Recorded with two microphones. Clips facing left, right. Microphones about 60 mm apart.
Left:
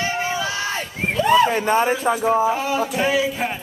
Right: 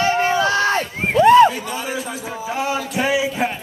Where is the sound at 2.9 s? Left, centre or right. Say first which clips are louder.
Even; centre.